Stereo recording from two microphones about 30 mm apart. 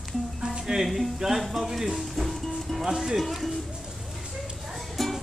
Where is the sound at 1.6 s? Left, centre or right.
Centre.